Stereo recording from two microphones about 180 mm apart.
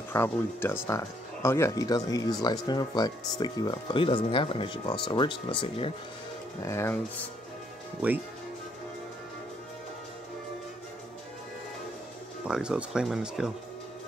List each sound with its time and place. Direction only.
0.1 s speech: 10° left (ahead or behind)
6.6 s speech: 15° left (ahead or behind)
12.4 s speech: 5° right (ahead or behind)